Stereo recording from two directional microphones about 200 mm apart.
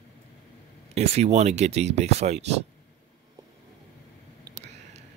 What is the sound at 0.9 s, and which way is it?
Speech, 35° right (ahead or behind).